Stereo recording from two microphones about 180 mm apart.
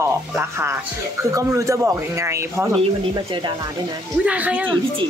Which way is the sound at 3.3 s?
25° right (ahead or behind).